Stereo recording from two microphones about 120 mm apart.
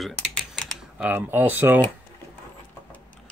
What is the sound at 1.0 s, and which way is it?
Speech, 15° right (ahead or behind).